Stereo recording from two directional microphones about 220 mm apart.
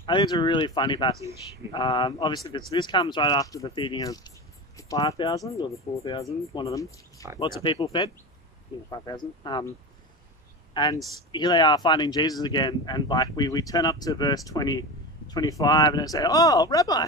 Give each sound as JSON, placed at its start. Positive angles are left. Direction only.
{"t": 0.0, "sound": "speech", "side_deg": 20}
{"t": 10.7, "sound": "speech", "side_deg": 20}